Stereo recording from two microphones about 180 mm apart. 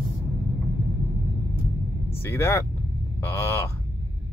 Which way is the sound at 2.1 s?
15° left (ahead or behind).